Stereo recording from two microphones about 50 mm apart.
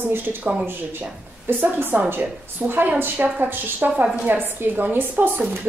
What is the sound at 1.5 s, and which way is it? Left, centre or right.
A woman's voice, right.